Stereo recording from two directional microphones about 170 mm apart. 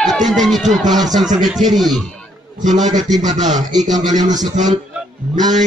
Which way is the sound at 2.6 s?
45° right (ahead or behind).